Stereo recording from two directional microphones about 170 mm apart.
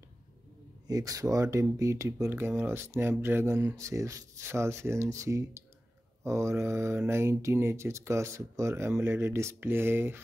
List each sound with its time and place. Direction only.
0.8 s speech: 20° right (ahead or behind)